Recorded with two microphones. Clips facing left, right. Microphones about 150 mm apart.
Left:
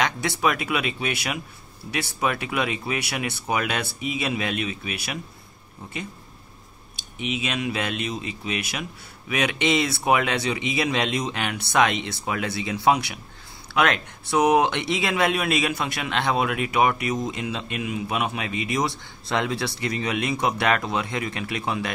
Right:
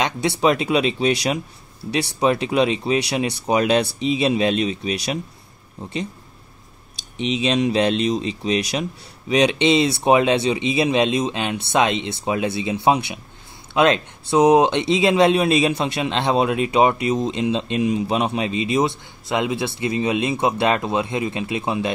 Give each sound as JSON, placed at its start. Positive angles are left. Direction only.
{"t": 0.4, "sound": "speech", "side_deg": -25}
{"t": 7.2, "sound": "speech", "side_deg": -30}